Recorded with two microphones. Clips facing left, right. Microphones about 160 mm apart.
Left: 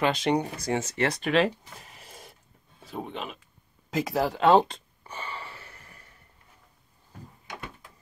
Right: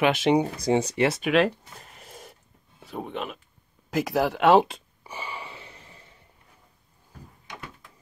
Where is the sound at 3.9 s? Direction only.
Centre (ahead or behind); by 6.2 s 20° right (ahead or behind).